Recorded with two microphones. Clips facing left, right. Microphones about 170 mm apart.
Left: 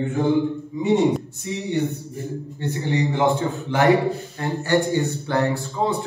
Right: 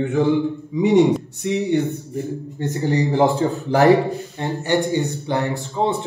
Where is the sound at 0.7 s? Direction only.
85° right.